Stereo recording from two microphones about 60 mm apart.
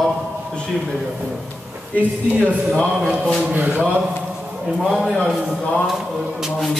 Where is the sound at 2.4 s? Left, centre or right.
Left.